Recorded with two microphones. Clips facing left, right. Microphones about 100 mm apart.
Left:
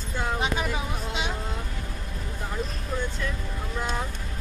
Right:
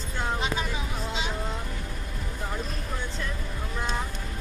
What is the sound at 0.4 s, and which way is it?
Vehicle, 60° left (ahead or behind).